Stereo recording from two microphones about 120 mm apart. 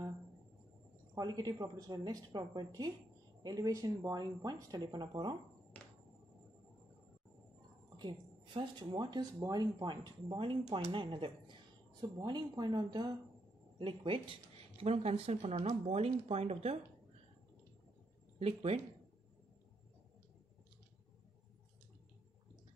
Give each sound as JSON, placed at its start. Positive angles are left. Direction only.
{"t": 1.1, "sound": "speech", "side_deg": -30}
{"t": 8.5, "sound": "speech", "side_deg": -40}
{"t": 13.7, "sound": "speech", "side_deg": -45}
{"t": 18.4, "sound": "speech", "side_deg": -60}